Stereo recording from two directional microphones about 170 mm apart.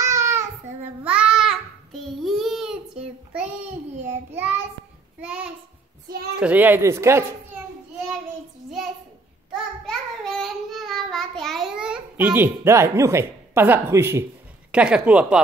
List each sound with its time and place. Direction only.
0.0 s a sound: 15° right (ahead or behind)
1.0 s child singing: 5° right (ahead or behind)
4.1 s a woman's voice: 10° right (ahead or behind)
9.8 s child singing: centre (ahead or behind); by 14.2 s 15° right (ahead or behind)
14.7 s a woman's voice: 5° right (ahead or behind)